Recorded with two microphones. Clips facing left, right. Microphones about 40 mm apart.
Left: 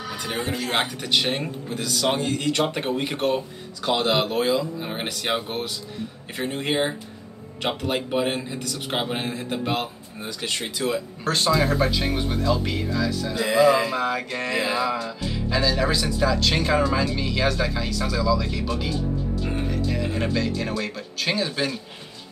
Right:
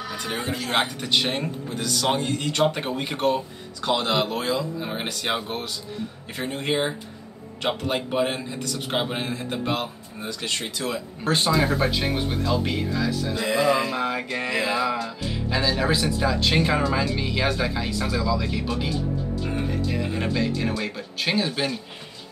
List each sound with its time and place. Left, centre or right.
0.3 s speech: centre
3.8 s speech: centre
4.5 s speech: centre
11.2 s music: centre